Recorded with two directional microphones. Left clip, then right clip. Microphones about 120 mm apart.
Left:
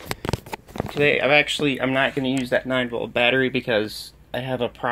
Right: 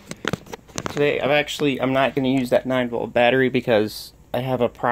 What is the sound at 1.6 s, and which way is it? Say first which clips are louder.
Speech: right 1 dB; 50° right (ahead or behind).